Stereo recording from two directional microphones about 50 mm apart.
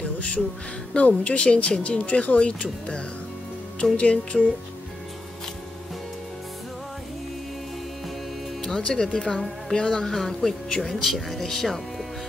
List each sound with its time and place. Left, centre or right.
0.9 s speech: left
8.6 s speech: centre